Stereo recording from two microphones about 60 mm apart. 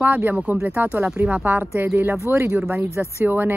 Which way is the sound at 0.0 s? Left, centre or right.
Right.